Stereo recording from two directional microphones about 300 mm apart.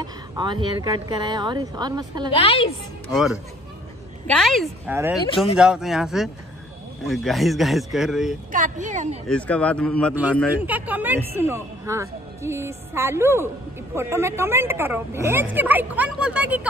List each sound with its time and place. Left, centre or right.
0.0 s a woman's voice: centre
2.3 s a woman's voice: centre
3.1 s a man's voice: centre
8.5 s speech: right
9.3 s a man's voice: centre